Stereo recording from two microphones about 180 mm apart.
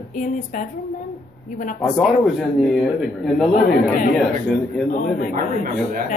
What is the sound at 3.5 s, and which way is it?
Speech, 55° left (ahead or behind).